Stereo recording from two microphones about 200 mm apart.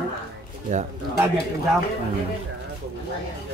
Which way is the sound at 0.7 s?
40° right (ahead or behind).